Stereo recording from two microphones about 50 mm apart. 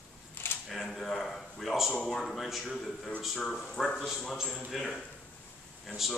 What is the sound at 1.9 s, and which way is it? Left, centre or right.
Speech, centre.